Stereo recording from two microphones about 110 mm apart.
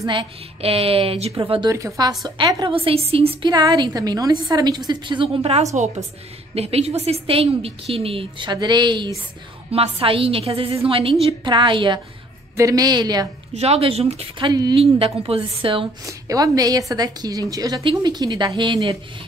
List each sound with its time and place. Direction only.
0.1 s a woman's voice: 55° right (ahead or behind)
1.4 s a woman's voice: 45° right (ahead or behind)
1.7 s a woman's voice: 30° right (ahead or behind)
2.3 s a woman's voice: 55° right (ahead or behind)
3.4 s a woman's voice: 40° right (ahead or behind)
9.7 s a woman's voice: 60° right (ahead or behind)
12.5 s a woman's voice: 30° right (ahead or behind)
13.6 s a woman's voice: 65° right (ahead or behind)
14.5 s a woman's voice: 35° right (ahead or behind)
15.0 s a woman's voice: 60° right (ahead or behind)
16.1 s a woman's voice: 30° right (ahead or behind)